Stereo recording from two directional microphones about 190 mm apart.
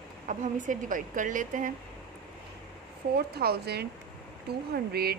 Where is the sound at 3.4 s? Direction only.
55° right (ahead or behind).